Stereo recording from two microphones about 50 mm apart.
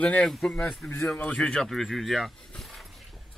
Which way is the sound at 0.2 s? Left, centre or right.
Centre.